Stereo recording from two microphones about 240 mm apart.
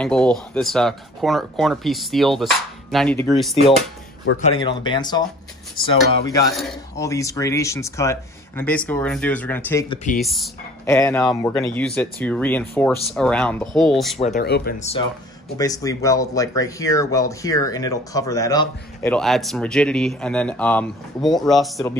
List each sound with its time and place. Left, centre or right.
0.0 s speech: centre
4.4 s speech: centre
5.8 s speech: left
6.5 s speech: centre
7.0 s speech: centre
10.9 s speech: centre
14.1 s speech: left
14.4 s speech: left
14.8 s speech: left
15.5 s speech: centre
19.1 s speech: centre